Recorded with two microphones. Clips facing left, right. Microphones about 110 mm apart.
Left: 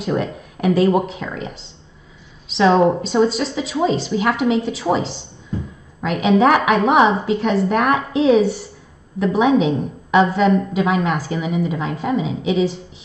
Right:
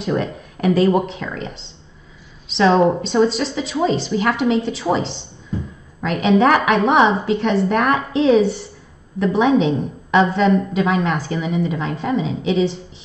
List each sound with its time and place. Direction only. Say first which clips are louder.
0.0 s a woman's voice: even; 5° left (ahead or behind)